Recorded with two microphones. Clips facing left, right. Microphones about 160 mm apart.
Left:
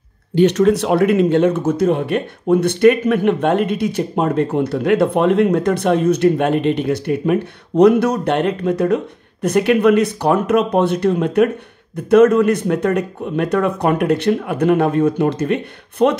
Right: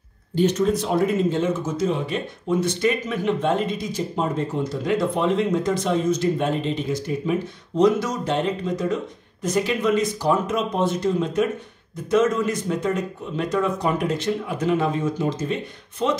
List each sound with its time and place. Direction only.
0.3 s speech: 70° left (ahead or behind)